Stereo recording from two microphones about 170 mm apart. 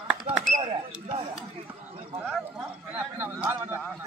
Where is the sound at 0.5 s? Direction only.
40° right (ahead or behind).